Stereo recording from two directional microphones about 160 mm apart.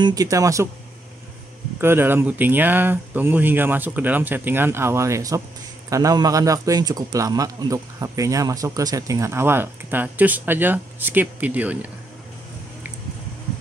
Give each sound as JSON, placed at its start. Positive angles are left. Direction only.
{"t": 0.0, "sound": "speech", "side_deg": -20}
{"t": 1.8, "sound": "speech", "side_deg": -15}